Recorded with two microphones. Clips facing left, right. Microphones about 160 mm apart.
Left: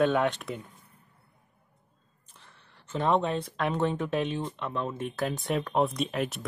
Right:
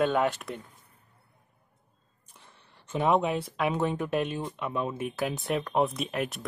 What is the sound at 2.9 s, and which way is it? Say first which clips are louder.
Speech: right 1 dB; 10° right (ahead or behind).